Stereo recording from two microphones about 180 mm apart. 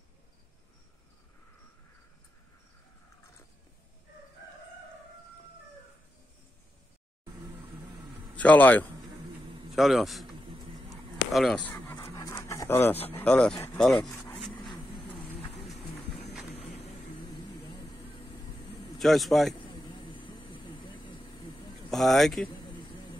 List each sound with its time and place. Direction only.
8.4 s a man's voice: 10° left (ahead or behind)
10.9 s a sound: centre (ahead or behind)
11.9 s dog: 15° left (ahead or behind)
13.1 s speech: 5° left (ahead or behind)
16.5 s a sound: 35° left (ahead or behind)
17.6 s vehicle: 25° left (ahead or behind)
18.9 s speech: centre (ahead or behind)
19.7 s vehicle: 25° left (ahead or behind)
21.8 s speech: centre (ahead or behind)
22.5 s a sound: 30° left (ahead or behind)